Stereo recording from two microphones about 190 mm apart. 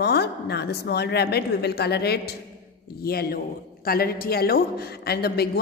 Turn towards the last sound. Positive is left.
turn(degrees=55)  # may be behind; listen again after turning